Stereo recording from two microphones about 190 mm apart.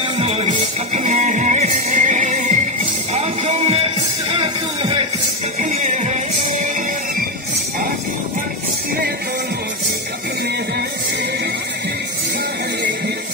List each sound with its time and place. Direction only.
0.2 s music: 30° right (ahead or behind)
5.6 s music: 40° right (ahead or behind)